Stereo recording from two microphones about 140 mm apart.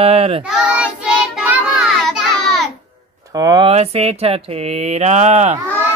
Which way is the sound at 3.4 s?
25° right (ahead or behind).